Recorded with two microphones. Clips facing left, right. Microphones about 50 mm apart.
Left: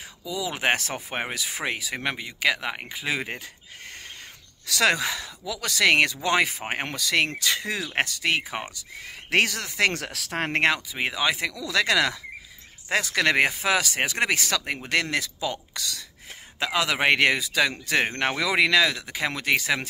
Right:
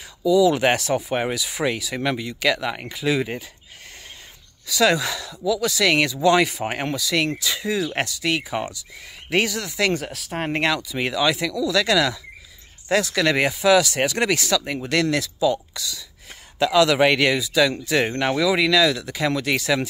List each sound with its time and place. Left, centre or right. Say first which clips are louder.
0.3 s speech: right 9 dB; left
0.7 s speech: right 8 dB; left
4.6 s speech: right 4 dB; left
5.0 s speech: right 6 dB; left
6.2 s speech: right 6 dB; left
6.9 s speech: even; left
9.3 s speech: right 1 dB; left
9.9 s speech: right 2 dB; left
10.6 s speech: even; left
16.5 s speech: right 8 dB; left